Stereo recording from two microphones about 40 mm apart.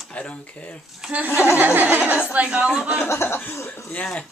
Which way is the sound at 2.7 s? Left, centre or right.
Centre.